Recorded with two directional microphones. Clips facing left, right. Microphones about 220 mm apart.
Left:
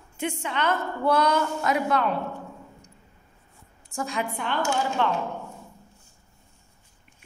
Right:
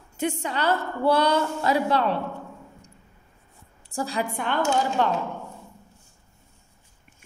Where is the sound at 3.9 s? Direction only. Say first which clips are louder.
Right 2 dB; 35° right (ahead or behind).